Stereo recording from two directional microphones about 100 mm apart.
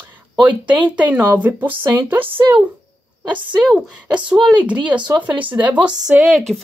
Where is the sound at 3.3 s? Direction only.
5° right (ahead or behind).